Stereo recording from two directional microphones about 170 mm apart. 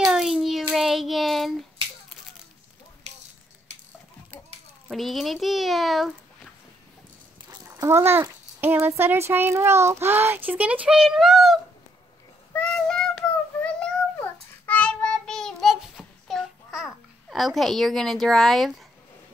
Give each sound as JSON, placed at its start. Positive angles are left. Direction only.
{"t": 0.0, "sound": "child singing", "side_deg": -5}
{"t": 3.1, "sound": "a sound", "side_deg": -40}
{"t": 4.8, "sound": "a child's voice", "side_deg": 0}
{"t": 7.6, "sound": "a child's voice", "side_deg": -15}
{"t": 12.5, "sound": "child singing", "side_deg": 5}